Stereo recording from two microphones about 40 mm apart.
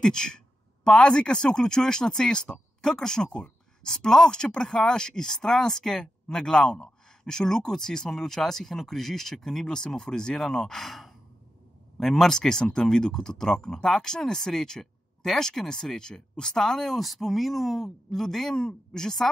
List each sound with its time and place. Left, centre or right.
0.0 s speech: centre
12.4 s speech: centre